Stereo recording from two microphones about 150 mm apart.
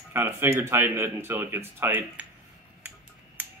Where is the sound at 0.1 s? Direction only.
15° right (ahead or behind).